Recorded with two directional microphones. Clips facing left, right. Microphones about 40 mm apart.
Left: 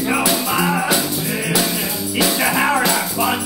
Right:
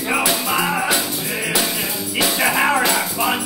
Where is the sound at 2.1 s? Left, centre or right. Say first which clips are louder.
Even; right.